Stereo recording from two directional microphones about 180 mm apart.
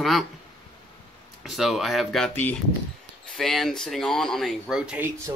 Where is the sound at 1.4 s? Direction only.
Centre (ahead or behind).